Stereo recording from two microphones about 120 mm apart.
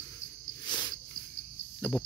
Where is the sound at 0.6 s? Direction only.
35° left (ahead or behind).